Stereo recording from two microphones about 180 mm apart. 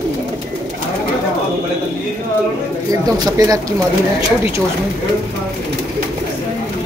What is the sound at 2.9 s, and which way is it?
Speech, 20° right (ahead or behind).